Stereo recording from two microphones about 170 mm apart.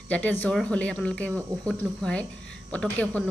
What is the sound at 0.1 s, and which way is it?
Speech, 10° left (ahead or behind).